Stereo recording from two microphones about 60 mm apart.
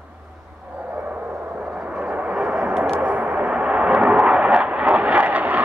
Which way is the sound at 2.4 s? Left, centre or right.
Centre.